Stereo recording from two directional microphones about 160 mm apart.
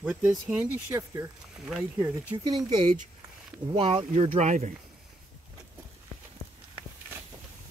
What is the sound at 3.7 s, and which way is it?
Speech, 35° right (ahead or behind).